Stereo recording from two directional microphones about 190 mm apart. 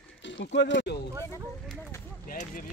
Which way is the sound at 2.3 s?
45° left (ahead or behind).